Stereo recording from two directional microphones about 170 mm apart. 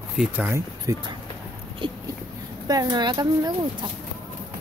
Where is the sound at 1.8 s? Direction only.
30° right (ahead or behind).